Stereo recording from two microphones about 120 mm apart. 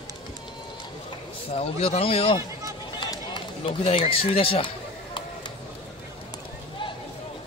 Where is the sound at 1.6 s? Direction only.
55° left (ahead or behind).